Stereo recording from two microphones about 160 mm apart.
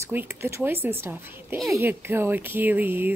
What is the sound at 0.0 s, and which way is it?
Speech, 15° right (ahead or behind).